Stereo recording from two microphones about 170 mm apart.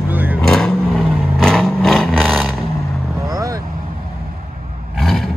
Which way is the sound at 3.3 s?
20° right (ahead or behind).